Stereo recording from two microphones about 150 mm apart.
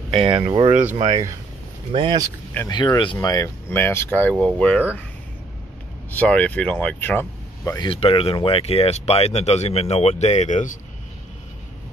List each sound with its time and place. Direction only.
0.1 s speech: 35° right (ahead or behind)
2.7 s speech: 30° left (ahead or behind); by 4.8 s 10° left (ahead or behind)
6.1 s speech: 10° left (ahead or behind)
7.9 s speech: 40° left (ahead or behind); by 10.8 s 55° left (ahead or behind)